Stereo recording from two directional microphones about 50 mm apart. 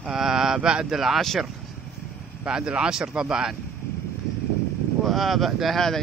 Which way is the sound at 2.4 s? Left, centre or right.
Centre.